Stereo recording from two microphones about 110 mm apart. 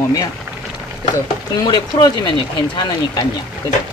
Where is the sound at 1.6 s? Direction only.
40° left (ahead or behind).